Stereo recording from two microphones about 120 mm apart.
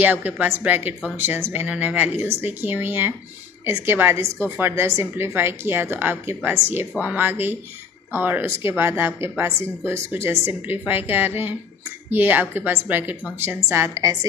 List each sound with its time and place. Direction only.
0.0 s a woman's voice: 15° right (ahead or behind)